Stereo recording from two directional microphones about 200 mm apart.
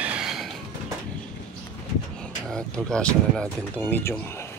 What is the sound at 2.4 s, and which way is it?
Speech, 5° left (ahead or behind).